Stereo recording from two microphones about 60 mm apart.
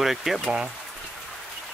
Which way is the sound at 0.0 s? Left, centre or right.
Centre.